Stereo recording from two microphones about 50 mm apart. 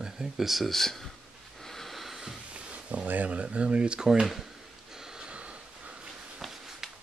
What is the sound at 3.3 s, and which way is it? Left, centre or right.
Speech, right.